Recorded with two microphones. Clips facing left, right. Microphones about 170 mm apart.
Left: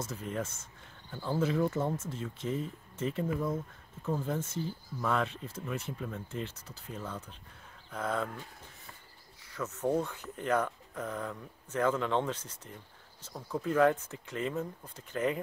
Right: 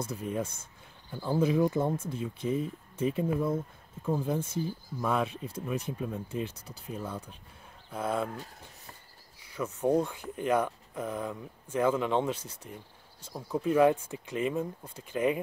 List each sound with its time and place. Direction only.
0.0 s speech: 15° right (ahead or behind)
9.4 s speech: 10° right (ahead or behind)